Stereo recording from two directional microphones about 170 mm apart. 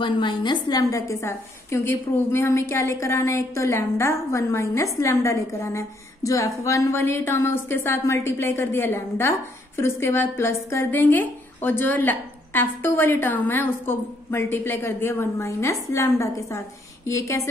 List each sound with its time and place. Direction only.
0.0 s a woman's voice: 30° left (ahead or behind)